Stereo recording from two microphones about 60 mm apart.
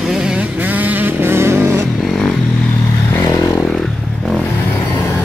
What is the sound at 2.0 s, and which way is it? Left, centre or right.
Vehicle, centre.